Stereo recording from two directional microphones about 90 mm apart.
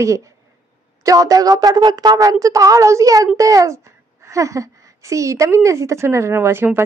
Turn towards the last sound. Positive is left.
turn(degrees=-25)  # may be behind; listen again after turning